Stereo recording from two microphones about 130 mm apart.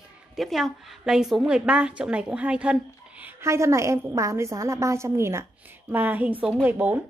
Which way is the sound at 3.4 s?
20° right (ahead or behind).